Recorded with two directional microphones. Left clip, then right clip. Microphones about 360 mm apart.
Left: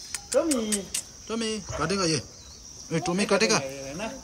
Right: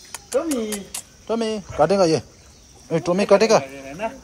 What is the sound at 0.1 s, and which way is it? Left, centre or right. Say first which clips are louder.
A man's voice: right 2 dB; centre.